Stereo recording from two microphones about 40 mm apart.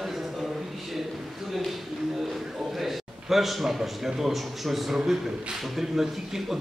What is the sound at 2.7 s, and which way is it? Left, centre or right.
A man's voice, centre.